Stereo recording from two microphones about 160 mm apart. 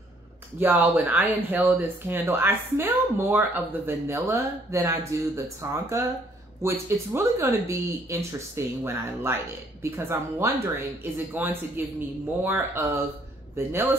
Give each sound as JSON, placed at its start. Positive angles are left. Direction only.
{"t": 0.6, "sound": "speech", "side_deg": -10}